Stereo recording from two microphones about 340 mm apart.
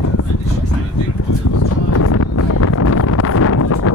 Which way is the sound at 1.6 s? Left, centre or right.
Left.